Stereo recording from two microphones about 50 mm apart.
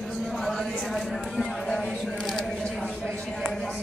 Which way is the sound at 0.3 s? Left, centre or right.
Centre.